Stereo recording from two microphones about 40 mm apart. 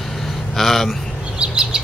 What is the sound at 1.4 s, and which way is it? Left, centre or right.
Bird, centre.